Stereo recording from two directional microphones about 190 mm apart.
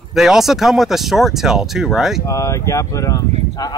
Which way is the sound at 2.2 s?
15° left (ahead or behind).